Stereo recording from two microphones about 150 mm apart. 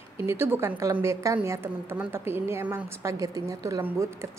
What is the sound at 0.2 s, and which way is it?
A woman's voice, 15° right (ahead or behind).